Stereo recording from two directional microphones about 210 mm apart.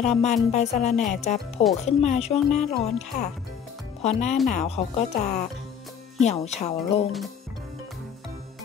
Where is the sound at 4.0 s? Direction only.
30° left (ahead or behind).